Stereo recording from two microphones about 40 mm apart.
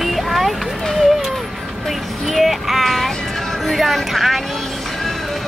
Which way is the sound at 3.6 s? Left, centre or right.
Centre.